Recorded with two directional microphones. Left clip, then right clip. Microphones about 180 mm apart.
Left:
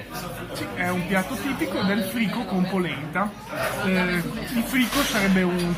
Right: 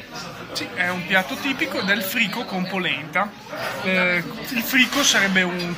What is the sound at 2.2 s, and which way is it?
Speech, 10° right (ahead or behind).